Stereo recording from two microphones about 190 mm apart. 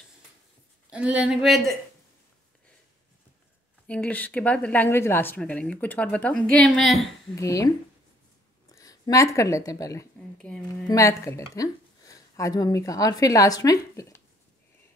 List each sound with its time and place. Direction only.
0.9 s speech: 5° right (ahead or behind)
3.8 s speech: 5° left (ahead or behind)
7.3 s speech: 15° left (ahead or behind)
8.7 s speech: 20° left (ahead or behind)
10.4 s speech: 5° left (ahead or behind)
10.9 s a woman's voice: 15° left (ahead or behind)